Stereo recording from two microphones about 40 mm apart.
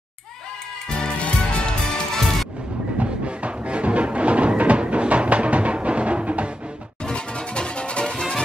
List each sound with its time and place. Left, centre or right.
0.8 s music: left
3.0 s music: right
7.1 s music: left